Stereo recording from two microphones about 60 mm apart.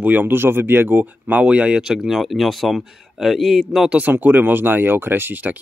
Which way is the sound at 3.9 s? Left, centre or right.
Right.